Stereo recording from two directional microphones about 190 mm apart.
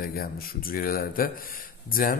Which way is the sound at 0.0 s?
50° left (ahead or behind).